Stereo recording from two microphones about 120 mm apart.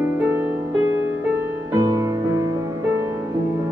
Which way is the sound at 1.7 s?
30° right (ahead or behind).